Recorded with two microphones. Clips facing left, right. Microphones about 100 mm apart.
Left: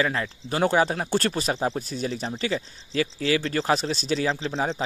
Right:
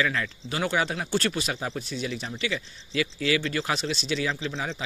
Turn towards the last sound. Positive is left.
turn(degrees=35)  # may be behind; listen again after turning